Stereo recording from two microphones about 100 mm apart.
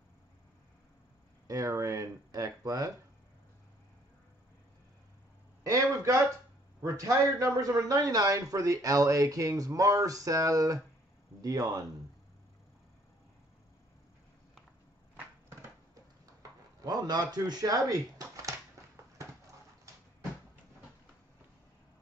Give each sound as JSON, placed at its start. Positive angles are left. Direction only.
{"t": 1.5, "sound": "speech", "side_deg": -35}
{"t": 5.6, "sound": "a sound", "side_deg": -30}
{"t": 6.8, "sound": "speech", "side_deg": -35}
{"t": 16.8, "sound": "speech", "side_deg": -40}